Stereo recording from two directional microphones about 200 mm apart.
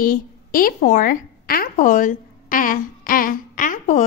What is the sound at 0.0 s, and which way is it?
A woman's voice, 45° left (ahead or behind).